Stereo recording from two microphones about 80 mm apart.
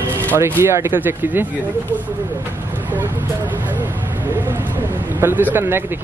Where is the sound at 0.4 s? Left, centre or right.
Right.